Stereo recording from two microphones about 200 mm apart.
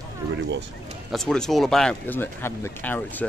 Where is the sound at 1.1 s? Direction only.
Centre (ahead or behind).